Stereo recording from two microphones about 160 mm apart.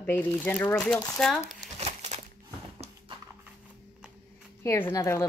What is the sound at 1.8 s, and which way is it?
Crumpling, 45° right (ahead or behind).